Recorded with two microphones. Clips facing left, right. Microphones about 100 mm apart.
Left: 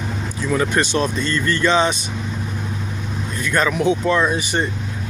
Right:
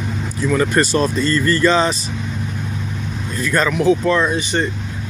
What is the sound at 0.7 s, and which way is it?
Speech, centre (ahead or behind).